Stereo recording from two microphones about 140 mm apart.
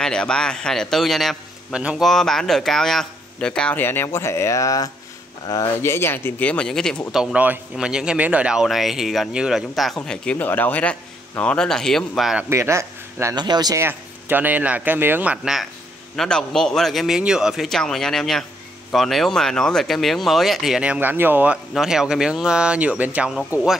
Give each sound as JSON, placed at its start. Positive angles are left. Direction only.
{"t": 0.0, "sound": "speech", "side_deg": 5}
{"t": 7.1, "sound": "speech", "side_deg": -5}
{"t": 12.4, "sound": "speech", "side_deg": -20}
{"t": 13.8, "sound": "speech", "side_deg": -15}
{"t": 16.2, "sound": "speech", "side_deg": 5}